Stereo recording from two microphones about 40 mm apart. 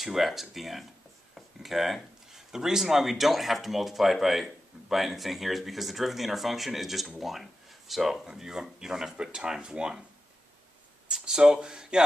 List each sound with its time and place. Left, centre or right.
0.0 s speech: centre
1.3 s a sound: centre
2.3 s speech: centre
11.1 s speech: centre